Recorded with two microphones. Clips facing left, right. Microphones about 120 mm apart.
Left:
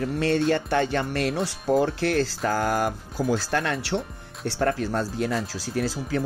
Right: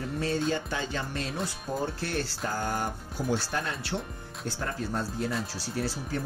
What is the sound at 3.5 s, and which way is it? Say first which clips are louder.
Speech: left 7 dB; 80° left.